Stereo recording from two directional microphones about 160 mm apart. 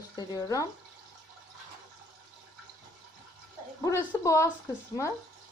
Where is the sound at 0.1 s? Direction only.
25° left (ahead or behind).